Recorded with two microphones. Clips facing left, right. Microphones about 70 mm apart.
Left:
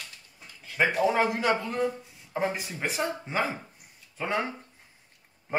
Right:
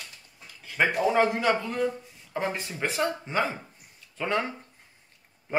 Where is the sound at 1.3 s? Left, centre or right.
Centre.